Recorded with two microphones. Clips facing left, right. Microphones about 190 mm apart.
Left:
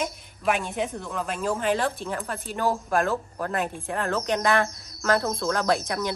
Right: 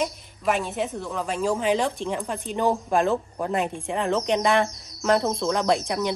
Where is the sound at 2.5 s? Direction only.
15° right (ahead or behind).